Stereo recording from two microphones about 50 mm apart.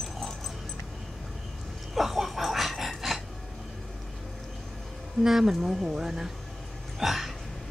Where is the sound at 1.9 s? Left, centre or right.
Centre.